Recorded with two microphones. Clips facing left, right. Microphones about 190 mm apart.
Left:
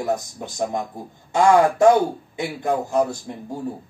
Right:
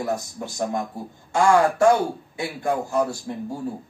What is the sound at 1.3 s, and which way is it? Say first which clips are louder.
A man's voice: left 2 dB; 20° left (ahead or behind).